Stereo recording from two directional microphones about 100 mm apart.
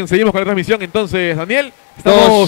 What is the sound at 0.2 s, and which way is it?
A man's voice, 30° left (ahead or behind).